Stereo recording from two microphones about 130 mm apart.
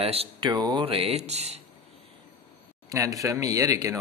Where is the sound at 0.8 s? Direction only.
50° right (ahead or behind).